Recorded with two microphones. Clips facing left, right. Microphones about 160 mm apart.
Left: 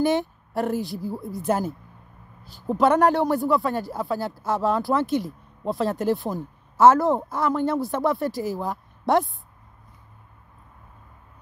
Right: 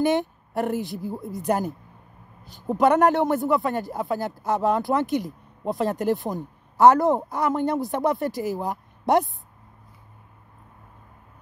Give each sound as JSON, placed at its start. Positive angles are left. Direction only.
{"t": 0.0, "sound": "a woman's voice", "side_deg": -20}